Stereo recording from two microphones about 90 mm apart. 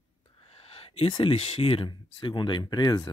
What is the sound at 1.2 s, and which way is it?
Speech, 90° left.